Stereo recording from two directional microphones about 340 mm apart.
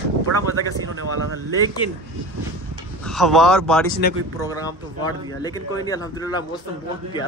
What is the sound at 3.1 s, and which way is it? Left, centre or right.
Speech, centre.